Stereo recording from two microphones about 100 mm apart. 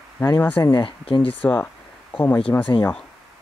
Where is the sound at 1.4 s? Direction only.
15° left (ahead or behind).